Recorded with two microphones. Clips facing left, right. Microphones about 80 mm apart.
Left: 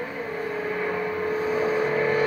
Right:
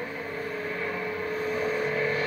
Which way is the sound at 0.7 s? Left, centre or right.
Centre.